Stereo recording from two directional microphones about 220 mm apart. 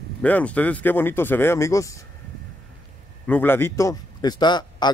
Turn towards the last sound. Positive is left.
turn(degrees=20)  # may be behind; listen again after turning